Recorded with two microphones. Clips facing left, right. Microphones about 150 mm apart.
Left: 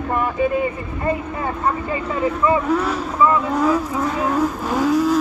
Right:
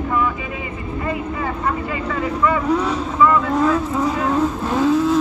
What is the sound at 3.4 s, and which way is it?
Vehicle, 5° left (ahead or behind).